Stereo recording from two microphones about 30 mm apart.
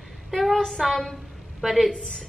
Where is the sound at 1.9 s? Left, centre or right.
Left.